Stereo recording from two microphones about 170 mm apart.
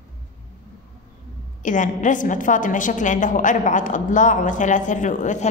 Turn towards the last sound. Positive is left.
turn(degrees=45)  # may be behind; listen again after turning